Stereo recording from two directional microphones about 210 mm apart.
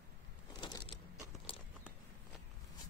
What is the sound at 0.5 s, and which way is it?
Vehicle, 20° left (ahead or behind).